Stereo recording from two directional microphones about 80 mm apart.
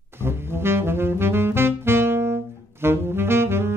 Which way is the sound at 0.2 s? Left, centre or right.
Right.